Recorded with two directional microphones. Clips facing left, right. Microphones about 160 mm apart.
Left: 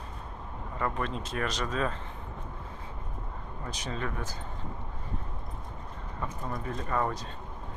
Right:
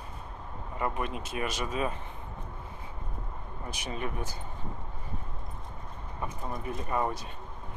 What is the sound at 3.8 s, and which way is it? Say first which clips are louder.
Speech: even; 15° right (ahead or behind).